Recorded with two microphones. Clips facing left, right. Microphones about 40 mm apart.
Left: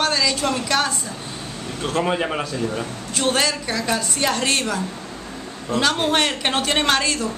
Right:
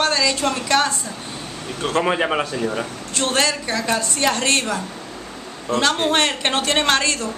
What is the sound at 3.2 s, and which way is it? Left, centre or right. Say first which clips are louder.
A woman's voice: even; centre.